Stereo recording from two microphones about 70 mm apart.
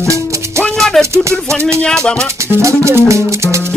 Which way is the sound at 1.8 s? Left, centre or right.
Centre.